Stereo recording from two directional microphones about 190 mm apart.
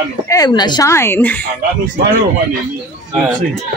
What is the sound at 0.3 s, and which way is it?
Speech, 20° left (ahead or behind).